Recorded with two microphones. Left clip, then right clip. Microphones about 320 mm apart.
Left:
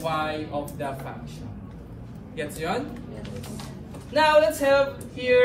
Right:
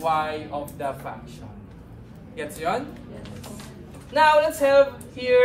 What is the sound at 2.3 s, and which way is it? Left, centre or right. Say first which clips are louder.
Speech: right 2 dB; centre.